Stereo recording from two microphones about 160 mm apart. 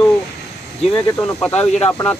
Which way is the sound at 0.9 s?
10° left (ahead or behind).